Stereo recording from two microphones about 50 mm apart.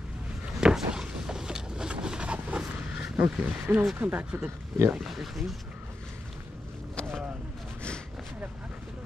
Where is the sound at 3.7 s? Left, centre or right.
Right.